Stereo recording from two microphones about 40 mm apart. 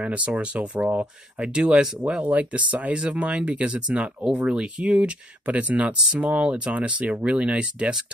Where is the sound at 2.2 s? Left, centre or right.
Right.